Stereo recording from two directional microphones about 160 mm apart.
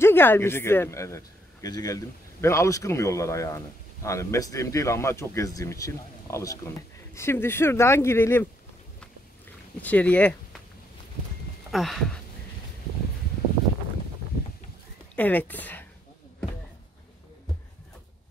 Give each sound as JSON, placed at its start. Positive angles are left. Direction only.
{"t": 0.0, "sound": "a man's voice", "side_deg": 15}
{"t": 9.8, "sound": "speech", "side_deg": 10}
{"t": 11.7, "sound": "speech", "side_deg": 0}
{"t": 15.1, "sound": "speech", "side_deg": 10}